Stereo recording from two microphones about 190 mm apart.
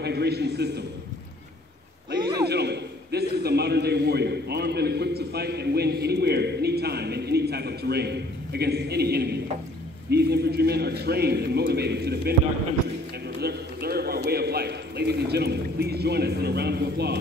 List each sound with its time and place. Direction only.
0.0 s a man's voice: 60° right (ahead or behind)
2.4 s a man's voice: 60° right (ahead or behind)
13.4 s a sound: 55° right (ahead or behind)